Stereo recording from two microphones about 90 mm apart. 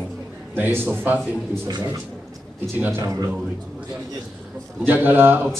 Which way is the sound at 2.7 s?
25° right (ahead or behind).